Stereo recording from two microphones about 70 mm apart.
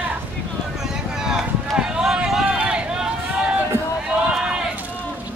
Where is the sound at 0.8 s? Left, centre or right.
Centre.